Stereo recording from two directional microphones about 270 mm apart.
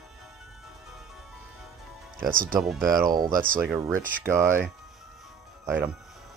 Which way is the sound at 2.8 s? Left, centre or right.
Centre.